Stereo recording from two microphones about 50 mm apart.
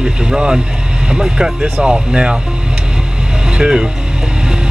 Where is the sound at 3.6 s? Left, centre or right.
Centre.